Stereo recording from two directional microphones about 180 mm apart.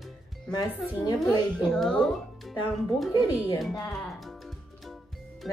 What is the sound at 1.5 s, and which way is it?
Speech, centre (ahead or behind).